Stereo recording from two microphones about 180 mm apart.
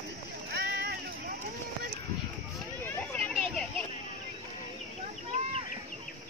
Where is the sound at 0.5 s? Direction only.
60° right (ahead or behind).